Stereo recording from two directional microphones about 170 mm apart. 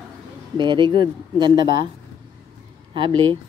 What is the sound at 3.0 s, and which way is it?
Speech, 30° right (ahead or behind).